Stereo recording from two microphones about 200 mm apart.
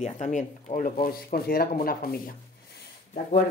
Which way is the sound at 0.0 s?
35° left (ahead or behind).